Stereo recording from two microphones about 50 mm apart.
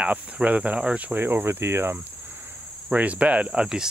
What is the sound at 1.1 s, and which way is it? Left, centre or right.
Speech, right.